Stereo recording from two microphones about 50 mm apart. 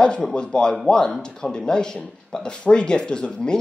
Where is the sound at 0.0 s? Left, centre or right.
Centre.